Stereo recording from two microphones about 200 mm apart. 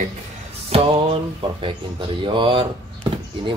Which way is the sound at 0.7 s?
25° right (ahead or behind).